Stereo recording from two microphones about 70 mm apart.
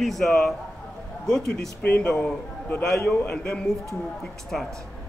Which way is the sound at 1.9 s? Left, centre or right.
Centre.